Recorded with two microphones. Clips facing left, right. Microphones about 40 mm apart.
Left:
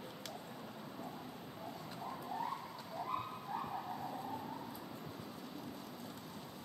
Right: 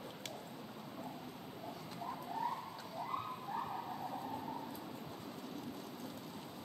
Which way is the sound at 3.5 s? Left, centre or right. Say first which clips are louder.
Even; centre.